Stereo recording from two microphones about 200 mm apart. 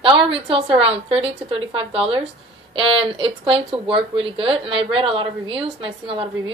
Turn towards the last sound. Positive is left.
turn(degrees=-25)  # may be behind; listen again after turning